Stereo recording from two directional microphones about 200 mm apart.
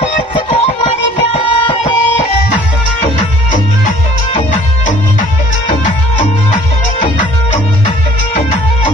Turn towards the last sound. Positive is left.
turn(degrees=40)  # may be behind; listen again after turning